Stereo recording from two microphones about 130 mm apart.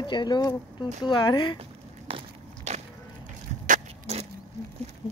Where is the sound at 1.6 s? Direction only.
45° right (ahead or behind).